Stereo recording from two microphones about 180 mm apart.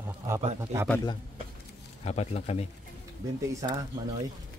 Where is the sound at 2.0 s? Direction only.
35° left (ahead or behind).